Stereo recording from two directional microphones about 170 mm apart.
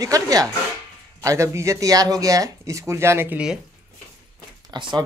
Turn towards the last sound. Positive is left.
turn(degrees=-25)  # may be behind; listen again after turning